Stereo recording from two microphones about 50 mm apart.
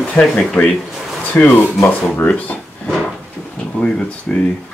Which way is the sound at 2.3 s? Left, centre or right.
Left.